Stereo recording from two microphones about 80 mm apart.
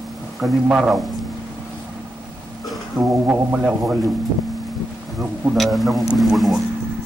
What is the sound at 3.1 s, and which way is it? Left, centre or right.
Speech, centre.